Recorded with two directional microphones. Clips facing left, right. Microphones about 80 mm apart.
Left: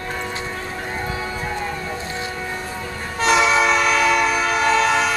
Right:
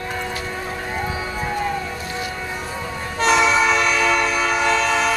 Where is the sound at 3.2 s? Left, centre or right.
Centre.